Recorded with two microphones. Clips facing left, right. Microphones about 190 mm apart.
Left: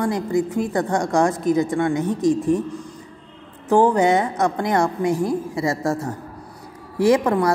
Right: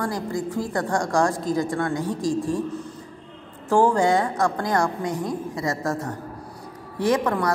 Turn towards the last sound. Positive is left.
turn(degrees=25)  # may be behind; listen again after turning